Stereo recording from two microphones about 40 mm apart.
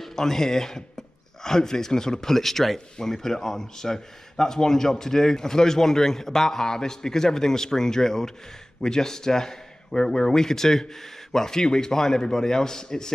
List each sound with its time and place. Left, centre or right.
0.0 s speech: centre